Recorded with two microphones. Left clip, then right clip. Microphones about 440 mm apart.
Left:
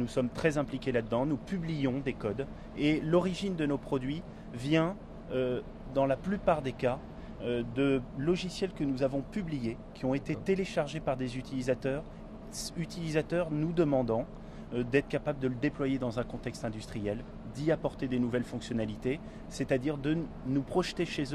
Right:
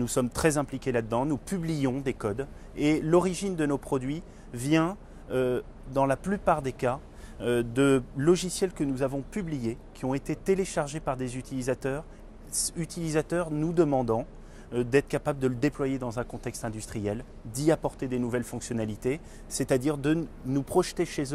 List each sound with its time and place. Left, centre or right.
0.0 s speech: right